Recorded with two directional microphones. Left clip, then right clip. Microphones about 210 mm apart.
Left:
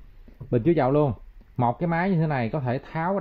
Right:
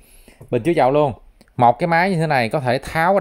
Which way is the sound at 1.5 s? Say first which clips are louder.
Right 10 dB; 25° right (ahead or behind).